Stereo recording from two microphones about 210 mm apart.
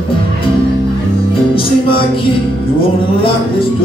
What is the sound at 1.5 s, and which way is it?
Music, 25° left (ahead or behind).